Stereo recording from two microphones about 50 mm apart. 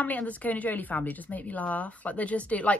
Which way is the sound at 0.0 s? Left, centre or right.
Left.